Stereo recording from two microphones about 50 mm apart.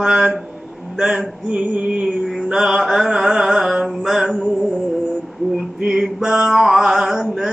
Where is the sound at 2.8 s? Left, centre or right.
Centre.